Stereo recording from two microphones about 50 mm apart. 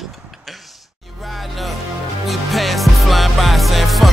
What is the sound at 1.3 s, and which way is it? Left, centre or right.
Music, centre.